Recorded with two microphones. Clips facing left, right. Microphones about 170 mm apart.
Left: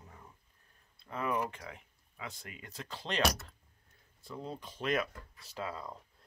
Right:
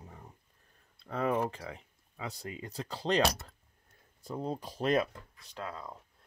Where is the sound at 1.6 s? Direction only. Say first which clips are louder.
Right 4 dB; 35° right (ahead or behind).